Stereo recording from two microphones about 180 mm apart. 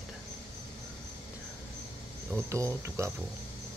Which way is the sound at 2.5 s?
15° right (ahead or behind).